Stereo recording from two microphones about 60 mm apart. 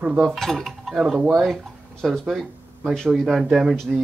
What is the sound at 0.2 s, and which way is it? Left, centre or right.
Dishes, centre.